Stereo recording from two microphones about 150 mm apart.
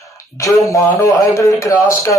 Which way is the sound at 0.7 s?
20° left (ahead or behind).